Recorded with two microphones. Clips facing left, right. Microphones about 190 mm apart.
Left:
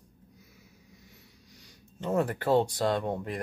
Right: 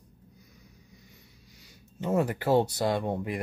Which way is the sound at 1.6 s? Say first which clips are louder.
Right 2 dB; 5° right (ahead or behind).